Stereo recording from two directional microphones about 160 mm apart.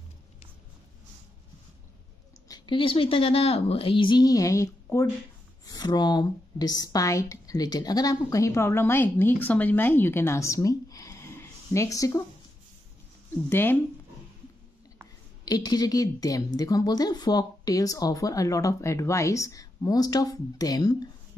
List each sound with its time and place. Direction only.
2.4 s a woman's voice: 25° left (ahead or behind)
13.5 s speech: 15° left (ahead or behind)
15.4 s speech: 25° left (ahead or behind)